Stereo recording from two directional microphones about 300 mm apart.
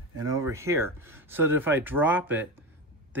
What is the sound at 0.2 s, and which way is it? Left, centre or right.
Speech, centre.